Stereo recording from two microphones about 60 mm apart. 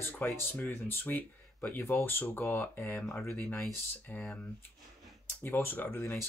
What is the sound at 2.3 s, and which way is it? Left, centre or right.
Speech, left.